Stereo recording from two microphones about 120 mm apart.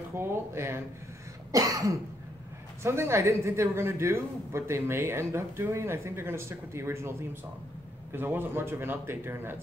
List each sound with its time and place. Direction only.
0.1 s speech: 20° right (ahead or behind)
1.5 s cough: 30° right (ahead or behind)
2.8 s speech: 20° right (ahead or behind)